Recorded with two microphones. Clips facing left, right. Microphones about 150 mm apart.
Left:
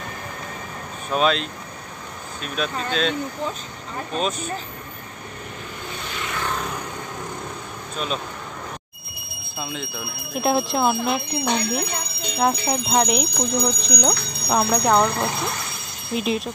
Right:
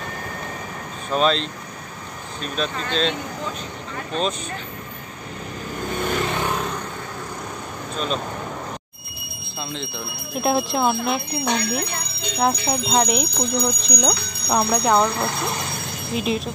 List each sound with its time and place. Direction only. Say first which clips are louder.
1.1 s speech: right 1 dB; 5° left (ahead or behind)
5.9 s vehicle: right 12 dB; 50° right (ahead or behind)
9.6 s speech: even; 10° left (ahead or behind)